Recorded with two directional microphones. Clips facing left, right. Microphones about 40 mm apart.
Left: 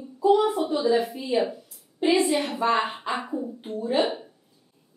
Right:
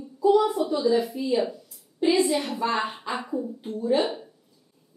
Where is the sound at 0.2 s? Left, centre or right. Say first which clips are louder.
Even; left.